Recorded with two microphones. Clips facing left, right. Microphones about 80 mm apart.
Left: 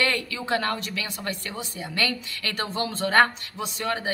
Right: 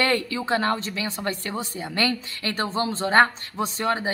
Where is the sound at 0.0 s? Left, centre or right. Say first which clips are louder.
Right 3 dB; right.